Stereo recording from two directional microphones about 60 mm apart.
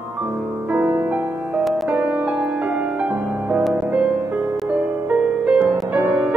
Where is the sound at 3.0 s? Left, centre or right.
Right.